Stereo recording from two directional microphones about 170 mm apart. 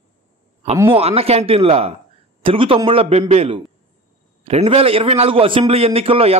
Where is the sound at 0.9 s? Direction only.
35° right (ahead or behind).